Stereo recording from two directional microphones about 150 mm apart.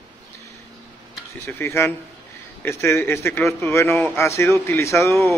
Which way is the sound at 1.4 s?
15° left (ahead or behind).